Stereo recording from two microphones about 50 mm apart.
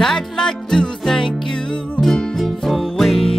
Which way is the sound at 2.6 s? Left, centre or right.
Centre.